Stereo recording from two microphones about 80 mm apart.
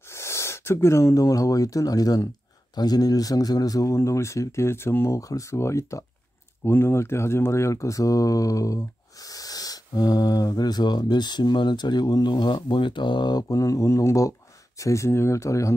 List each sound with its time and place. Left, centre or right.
0.1 s speech: left
6.6 s speech: left